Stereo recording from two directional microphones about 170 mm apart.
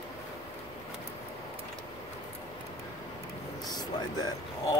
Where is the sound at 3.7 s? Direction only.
25° left (ahead or behind).